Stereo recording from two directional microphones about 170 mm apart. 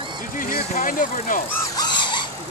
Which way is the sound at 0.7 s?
55° left (ahead or behind).